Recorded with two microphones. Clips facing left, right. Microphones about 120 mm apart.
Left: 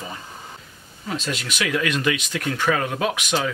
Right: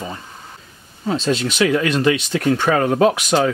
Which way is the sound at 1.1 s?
30° right (ahead or behind).